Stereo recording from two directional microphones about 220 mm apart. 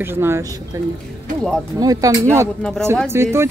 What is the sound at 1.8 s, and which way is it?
Speech, 15° right (ahead or behind).